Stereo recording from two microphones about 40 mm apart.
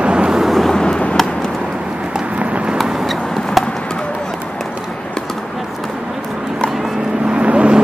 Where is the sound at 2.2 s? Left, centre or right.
Right.